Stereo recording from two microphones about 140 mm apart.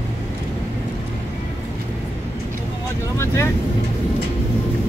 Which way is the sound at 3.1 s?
20° left (ahead or behind).